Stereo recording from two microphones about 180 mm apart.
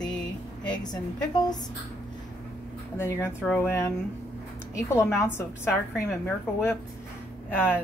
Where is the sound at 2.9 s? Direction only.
15° left (ahead or behind).